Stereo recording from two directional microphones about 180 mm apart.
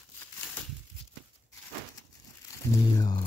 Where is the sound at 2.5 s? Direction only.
15° left (ahead or behind).